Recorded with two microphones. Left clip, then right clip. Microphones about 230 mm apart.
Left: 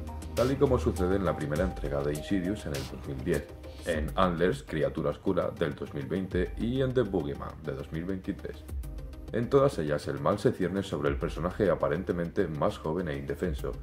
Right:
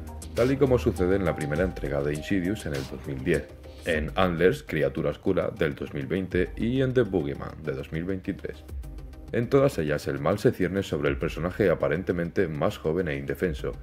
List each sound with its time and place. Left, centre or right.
0.4 s speech: right
3.3 s speech: centre
4.1 s speech: right